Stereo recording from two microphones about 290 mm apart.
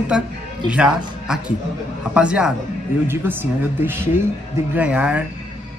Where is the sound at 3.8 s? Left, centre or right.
Centre.